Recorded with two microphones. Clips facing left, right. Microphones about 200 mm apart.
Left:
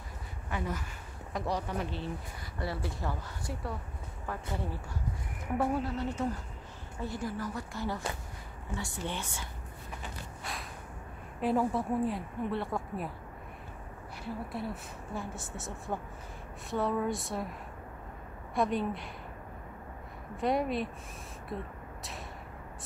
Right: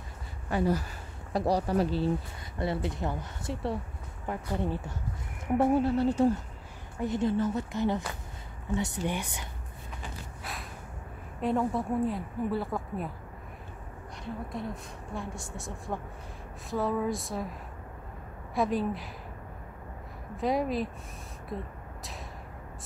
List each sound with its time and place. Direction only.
0.5 s speech: 35° right (ahead or behind)
2.6 s speech: 20° right (ahead or behind)
5.6 s speech: 30° right (ahead or behind)
10.4 s a sound: centre (ahead or behind)
11.4 s a woman's voice: centre (ahead or behind)
14.2 s a woman's voice: 5° left (ahead or behind)
20.3 s a woman's voice: centre (ahead or behind)